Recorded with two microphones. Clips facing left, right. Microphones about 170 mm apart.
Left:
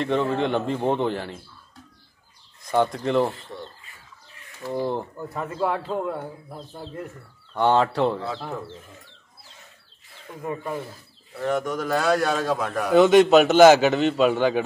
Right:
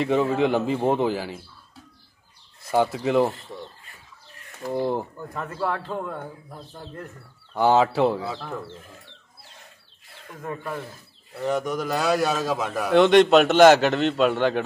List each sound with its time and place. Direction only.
0.0 s a man's voice: 5° right (ahead or behind)
2.6 s speech: 5° right (ahead or behind)
4.7 s a man's voice: 5° right (ahead or behind)
7.5 s a man's voice: 5° right (ahead or behind)
10.2 s speech: 10° left (ahead or behind)
11.4 s a man's voice: 15° right (ahead or behind)
12.9 s a man's voice: centre (ahead or behind)